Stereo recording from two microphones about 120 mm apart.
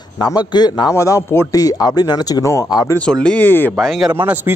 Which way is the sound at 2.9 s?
10° left (ahead or behind).